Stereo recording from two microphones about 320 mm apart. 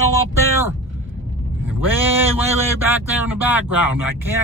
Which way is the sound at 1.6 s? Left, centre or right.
Centre.